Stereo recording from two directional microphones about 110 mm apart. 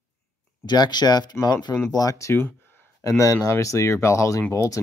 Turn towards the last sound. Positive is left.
turn(degrees=25)  # may be behind; listen again after turning